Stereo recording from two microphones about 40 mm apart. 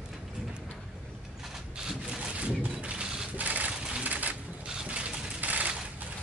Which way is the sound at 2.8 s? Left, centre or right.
Right.